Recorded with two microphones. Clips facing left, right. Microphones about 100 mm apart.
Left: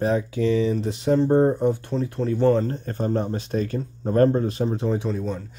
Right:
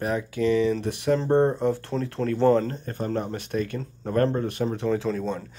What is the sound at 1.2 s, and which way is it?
Speech, 10° left (ahead or behind).